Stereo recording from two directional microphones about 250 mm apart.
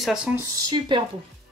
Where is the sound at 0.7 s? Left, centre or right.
Centre.